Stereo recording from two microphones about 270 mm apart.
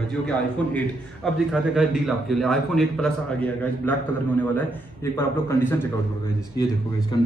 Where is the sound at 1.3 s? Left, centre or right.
Centre.